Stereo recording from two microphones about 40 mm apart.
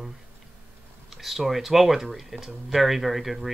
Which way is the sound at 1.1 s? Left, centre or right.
Centre.